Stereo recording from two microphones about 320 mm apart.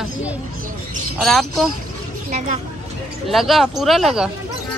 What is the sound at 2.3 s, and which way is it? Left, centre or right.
Speech, right.